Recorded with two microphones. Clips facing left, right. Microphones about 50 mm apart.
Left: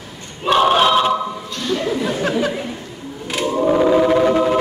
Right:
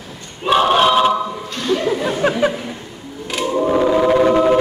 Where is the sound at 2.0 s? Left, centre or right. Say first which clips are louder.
Right 4 dB; centre.